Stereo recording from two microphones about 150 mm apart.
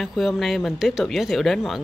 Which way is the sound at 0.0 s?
Centre (ahead or behind).